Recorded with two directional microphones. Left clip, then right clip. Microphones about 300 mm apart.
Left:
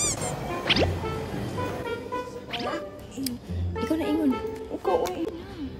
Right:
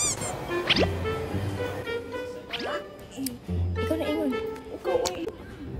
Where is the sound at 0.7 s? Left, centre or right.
Centre.